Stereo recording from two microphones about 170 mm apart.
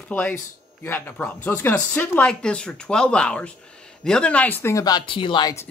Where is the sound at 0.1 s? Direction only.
10° left (ahead or behind).